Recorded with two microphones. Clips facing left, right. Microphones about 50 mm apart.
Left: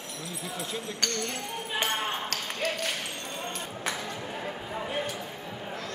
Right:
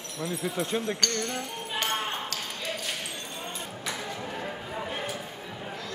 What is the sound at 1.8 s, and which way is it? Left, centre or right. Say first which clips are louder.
Ping: even; centre.